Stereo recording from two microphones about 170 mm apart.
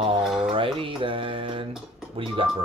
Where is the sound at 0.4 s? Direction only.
30° right (ahead or behind).